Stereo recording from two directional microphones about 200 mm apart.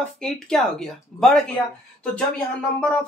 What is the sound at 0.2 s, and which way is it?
Speech, 5° left (ahead or behind).